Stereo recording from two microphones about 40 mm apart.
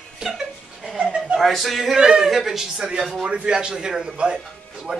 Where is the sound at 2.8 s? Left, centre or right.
Centre.